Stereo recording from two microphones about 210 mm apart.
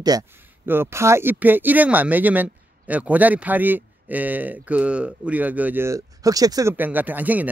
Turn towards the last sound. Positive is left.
turn(degrees=-10)  # may be behind; listen again after turning